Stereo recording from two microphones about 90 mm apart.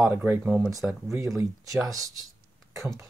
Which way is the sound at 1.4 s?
35° right (ahead or behind).